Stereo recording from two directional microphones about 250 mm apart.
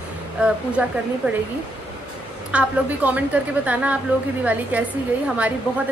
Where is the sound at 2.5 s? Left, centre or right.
Centre.